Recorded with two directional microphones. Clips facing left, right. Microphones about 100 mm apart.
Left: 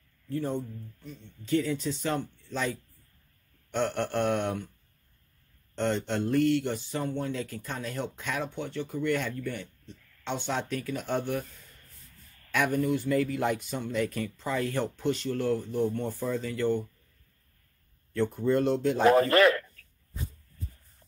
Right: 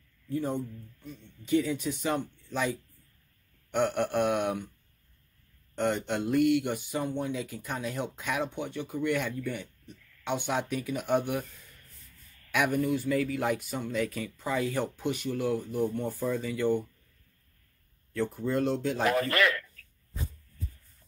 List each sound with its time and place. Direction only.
0.3 s speech: 15° right (ahead or behind)
5.8 s speech: 10° right (ahead or behind)
12.4 s speech: 10° right (ahead or behind)
18.1 s speech: centre (ahead or behind)
19.0 s speech: 30° left (ahead or behind)